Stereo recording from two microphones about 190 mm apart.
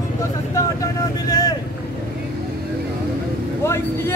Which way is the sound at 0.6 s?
15° left (ahead or behind).